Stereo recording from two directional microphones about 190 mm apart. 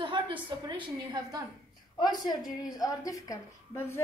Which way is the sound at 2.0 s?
20° left (ahead or behind).